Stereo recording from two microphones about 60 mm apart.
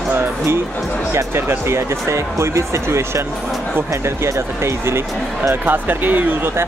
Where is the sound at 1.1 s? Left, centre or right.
Right.